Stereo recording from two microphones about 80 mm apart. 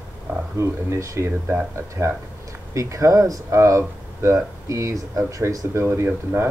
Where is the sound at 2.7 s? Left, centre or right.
Right.